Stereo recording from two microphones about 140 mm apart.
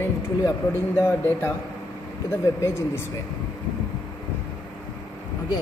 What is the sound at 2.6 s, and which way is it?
Speech, 20° left (ahead or behind).